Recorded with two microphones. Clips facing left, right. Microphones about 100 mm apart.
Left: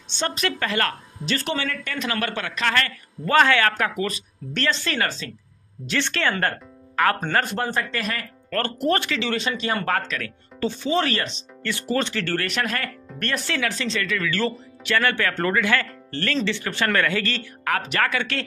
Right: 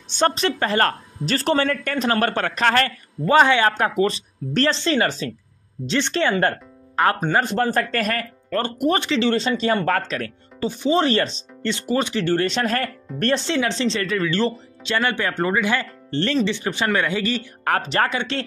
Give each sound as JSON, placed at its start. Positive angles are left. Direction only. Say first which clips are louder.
{"t": 0.3, "sound": "speech", "louder": "right 4 dB", "side_deg": -30}
{"t": 3.3, "sound": "speech", "louder": "right 3 dB", "side_deg": -20}
{"t": 7.7, "sound": "speech", "louder": "right 5 dB", "side_deg": -45}
{"t": 8.5, "sound": "speech", "louder": "right 2 dB", "side_deg": -15}
{"t": 10.6, "sound": "speech", "louder": "right 3 dB", "side_deg": -15}
{"t": 11.6, "sound": "speech", "louder": "right 2 dB", "side_deg": -20}
{"t": 12.6, "sound": "speech", "louder": "right 5 dB", "side_deg": -35}
{"t": 17.6, "sound": "speech", "louder": "right 3 dB", "side_deg": -35}